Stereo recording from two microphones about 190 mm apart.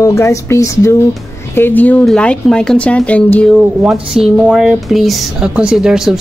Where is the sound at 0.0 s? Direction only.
15° left (ahead or behind).